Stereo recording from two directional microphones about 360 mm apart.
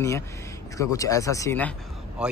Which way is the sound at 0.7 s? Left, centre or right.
Centre.